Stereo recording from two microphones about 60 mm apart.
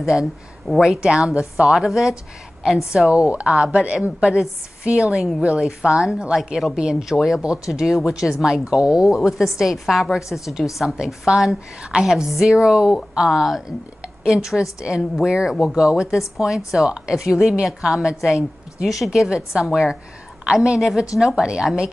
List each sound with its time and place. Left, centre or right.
0.0 s a woman's voice: centre
3.1 s a woman's voice: centre
9.1 s a woman's voice: centre
12.5 s a woman's voice: centre
13.3 s a woman's voice: centre
15.7 s a woman's voice: centre